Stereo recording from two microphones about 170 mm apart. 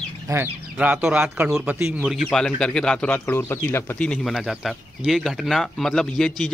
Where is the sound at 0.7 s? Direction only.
10° right (ahead or behind).